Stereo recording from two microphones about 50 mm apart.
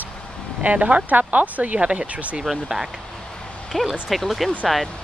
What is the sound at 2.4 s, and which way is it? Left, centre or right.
Speech, centre.